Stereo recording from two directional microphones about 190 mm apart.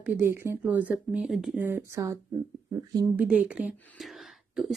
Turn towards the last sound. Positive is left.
turn(degrees=0)  # may be behind; listen again after turning